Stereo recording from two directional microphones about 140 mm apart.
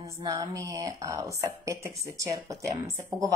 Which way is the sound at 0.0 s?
25° right (ahead or behind).